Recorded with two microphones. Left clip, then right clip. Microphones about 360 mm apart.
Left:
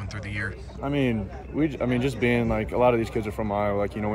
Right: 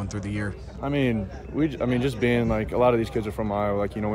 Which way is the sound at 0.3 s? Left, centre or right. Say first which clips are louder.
Left 1 dB; centre.